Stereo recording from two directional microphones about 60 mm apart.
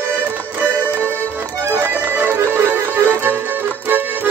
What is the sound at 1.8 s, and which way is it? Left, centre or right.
Music, right.